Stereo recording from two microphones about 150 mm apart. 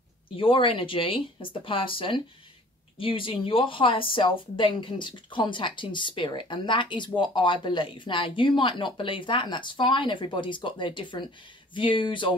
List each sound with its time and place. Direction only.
0.4 s speech: 35° left (ahead or behind)